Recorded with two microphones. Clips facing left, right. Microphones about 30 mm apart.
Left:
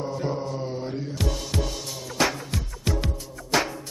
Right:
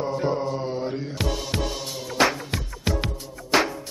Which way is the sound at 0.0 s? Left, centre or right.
Right.